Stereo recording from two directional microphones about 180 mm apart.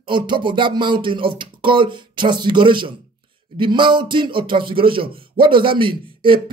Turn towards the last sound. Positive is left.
turn(degrees=-30)  # may be behind; listen again after turning